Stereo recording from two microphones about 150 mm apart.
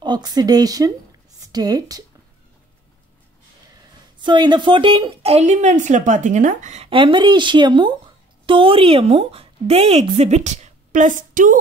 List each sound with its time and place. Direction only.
0.0 s speech: 30° right (ahead or behind)
4.2 s a woman's voice: 30° right (ahead or behind); by 6.9 s 50° right (ahead or behind)
6.9 s a woman's voice: 35° right (ahead or behind); by 11.5 s 60° right (ahead or behind)